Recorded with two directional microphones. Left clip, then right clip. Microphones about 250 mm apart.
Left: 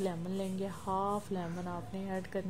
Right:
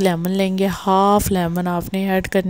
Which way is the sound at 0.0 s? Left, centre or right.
Right.